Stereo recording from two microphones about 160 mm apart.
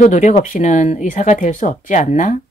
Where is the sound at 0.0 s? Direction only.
50° left (ahead or behind).